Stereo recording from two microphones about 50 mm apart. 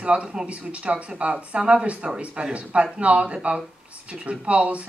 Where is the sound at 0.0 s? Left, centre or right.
Right.